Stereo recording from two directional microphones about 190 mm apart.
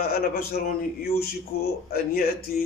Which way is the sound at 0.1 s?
55° left (ahead or behind).